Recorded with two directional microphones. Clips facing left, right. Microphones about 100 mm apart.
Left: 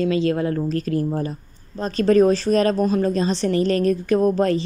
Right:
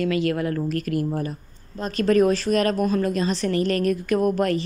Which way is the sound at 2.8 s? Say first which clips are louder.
Left 2 dB; 20° left (ahead or behind).